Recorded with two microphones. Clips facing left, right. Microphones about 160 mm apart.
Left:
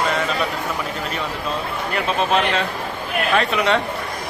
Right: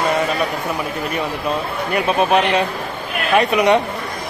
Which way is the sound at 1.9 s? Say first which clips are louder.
Right 4 dB; 15° right (ahead or behind).